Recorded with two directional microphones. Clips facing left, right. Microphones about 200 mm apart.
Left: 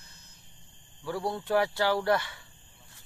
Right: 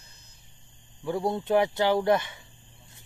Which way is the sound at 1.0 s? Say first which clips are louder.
Right 4 dB; 20° right (ahead or behind).